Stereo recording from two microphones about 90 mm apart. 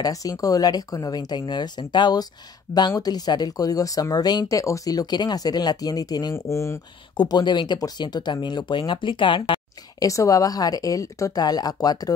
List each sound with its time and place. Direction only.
0.0 s a woman's voice: 40° left (ahead or behind)
4.6 s a woman's voice: 35° left (ahead or behind)
6.3 s speech: 30° left (ahead or behind)
7.2 s speech: 50° left (ahead or behind)
9.9 s a woman's voice: 40° left (ahead or behind)